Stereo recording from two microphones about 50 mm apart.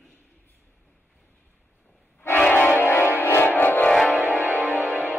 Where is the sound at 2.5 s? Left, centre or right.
Left.